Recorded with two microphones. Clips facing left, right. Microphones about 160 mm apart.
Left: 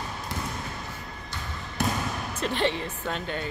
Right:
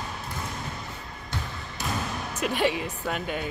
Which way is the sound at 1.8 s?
60° left (ahead or behind).